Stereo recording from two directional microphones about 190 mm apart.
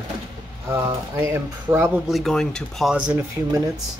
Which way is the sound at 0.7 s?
15° right (ahead or behind).